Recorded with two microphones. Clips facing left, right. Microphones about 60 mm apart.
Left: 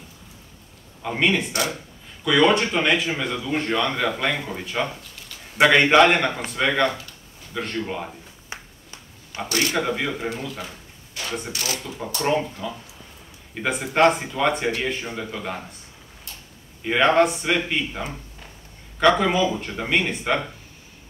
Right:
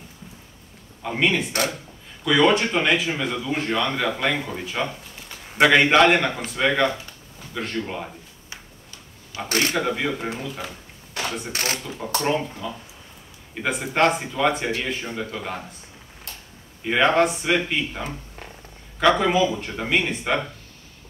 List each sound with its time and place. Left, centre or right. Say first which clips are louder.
1.0 s speech: even; centre
9.5 s speech: right 1 dB; right
9.8 s speech: even; centre
11.5 s speech: right 2 dB; right
12.2 s speech: left 1 dB; centre
13.6 s speech: left 2 dB; centre
16.8 s speech: left 1 dB; centre